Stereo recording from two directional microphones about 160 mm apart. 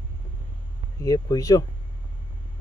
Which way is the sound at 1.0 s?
20° left (ahead or behind).